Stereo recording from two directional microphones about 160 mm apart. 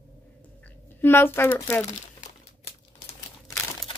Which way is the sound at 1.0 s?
15° left (ahead or behind).